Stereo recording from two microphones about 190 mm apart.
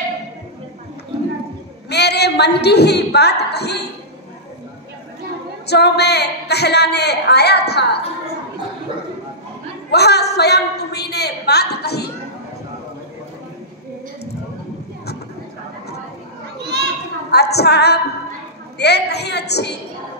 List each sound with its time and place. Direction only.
1.9 s a woman's voice: 60° left (ahead or behind)
5.7 s a woman's voice: 60° left (ahead or behind)
9.8 s a woman's voice: 60° left (ahead or behind)
16.6 s children playing: 60° right (ahead or behind)
17.3 s a woman's voice: 60° left (ahead or behind)